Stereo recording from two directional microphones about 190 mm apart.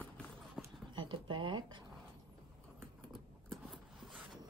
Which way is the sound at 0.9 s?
25° right (ahead or behind).